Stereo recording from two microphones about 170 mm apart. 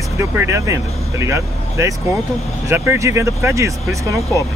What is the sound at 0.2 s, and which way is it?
Speech, 15° right (ahead or behind).